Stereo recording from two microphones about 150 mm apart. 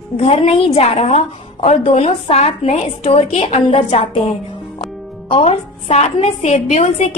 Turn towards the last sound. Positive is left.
turn(degrees=50)  # may be behind; listen again after turning